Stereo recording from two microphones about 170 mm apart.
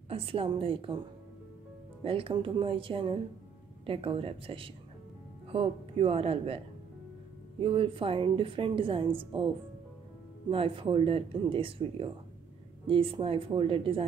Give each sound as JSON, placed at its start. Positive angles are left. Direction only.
{"t": 0.1, "sound": "a woman's voice", "side_deg": -35}
{"t": 2.0, "sound": "a woman's voice", "side_deg": -30}
{"t": 7.6, "sound": "a woman's voice", "side_deg": -30}
{"t": 10.5, "sound": "a woman's voice", "side_deg": -30}